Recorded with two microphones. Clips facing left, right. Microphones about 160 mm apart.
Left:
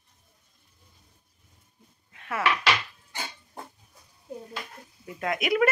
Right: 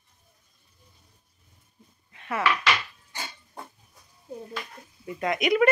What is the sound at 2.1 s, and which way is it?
Dishes, centre (ahead or behind).